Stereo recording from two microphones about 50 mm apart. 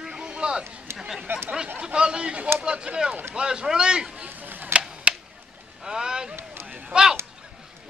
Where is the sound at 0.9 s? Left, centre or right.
Centre.